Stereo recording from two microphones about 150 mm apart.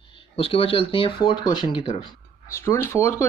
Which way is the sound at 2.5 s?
15° left (ahead or behind).